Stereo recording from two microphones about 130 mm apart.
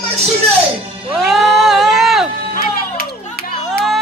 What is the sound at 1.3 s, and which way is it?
Music, centre (ahead or behind).